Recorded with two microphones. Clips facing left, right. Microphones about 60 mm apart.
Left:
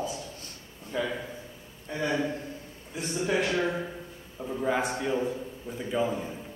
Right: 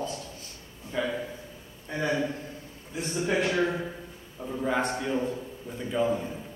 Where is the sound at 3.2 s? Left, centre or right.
Centre.